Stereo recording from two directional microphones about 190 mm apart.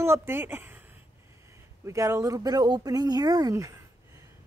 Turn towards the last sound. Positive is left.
turn(degrees=-15)  # may be behind; listen again after turning